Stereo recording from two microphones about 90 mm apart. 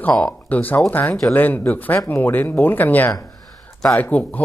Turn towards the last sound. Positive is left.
turn(degrees=15)  # may be behind; listen again after turning